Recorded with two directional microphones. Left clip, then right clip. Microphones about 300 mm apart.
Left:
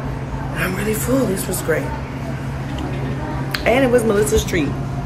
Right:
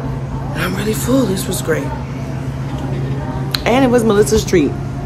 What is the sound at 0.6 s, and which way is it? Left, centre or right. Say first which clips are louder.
Speech: right 2 dB; centre.